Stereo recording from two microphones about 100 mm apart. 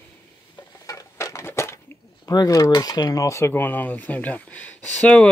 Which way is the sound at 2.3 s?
40° left (ahead or behind).